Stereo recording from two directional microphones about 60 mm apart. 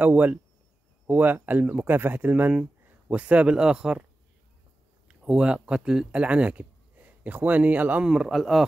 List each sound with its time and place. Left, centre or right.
0.0 s speech: right
5.0 s speech: centre
8.0 s speech: centre
8.3 s speech: centre